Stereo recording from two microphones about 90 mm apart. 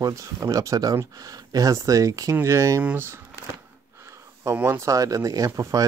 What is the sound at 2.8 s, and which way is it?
Speech, 15° right (ahead or behind).